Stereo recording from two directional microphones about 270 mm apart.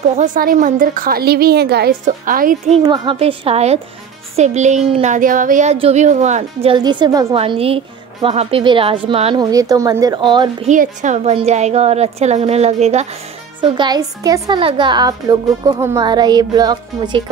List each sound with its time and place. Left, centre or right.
0.0 s a child's voice: right
10.7 s a child's voice: right